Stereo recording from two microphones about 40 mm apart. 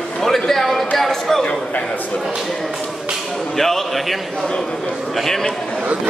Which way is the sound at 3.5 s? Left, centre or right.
Centre.